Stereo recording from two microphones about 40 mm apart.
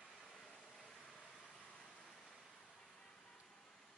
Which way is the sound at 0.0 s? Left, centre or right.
Centre.